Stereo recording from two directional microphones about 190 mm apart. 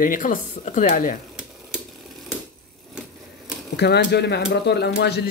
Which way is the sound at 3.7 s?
60° left (ahead or behind).